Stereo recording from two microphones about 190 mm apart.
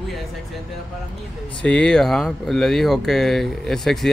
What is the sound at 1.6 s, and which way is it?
Speech, 5° left (ahead or behind).